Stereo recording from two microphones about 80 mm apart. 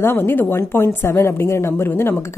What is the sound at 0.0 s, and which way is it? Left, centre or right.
A woman's voice, left.